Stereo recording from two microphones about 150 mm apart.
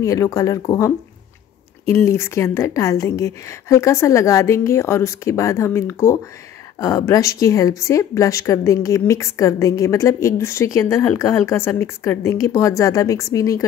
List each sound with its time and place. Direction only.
0.0 s speech: 20° left (ahead or behind)